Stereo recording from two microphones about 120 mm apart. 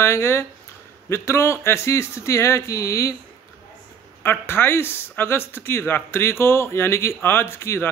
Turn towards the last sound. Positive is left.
turn(degrees=20)  # may be behind; listen again after turning